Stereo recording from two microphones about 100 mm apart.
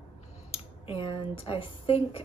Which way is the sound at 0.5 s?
70° left (ahead or behind).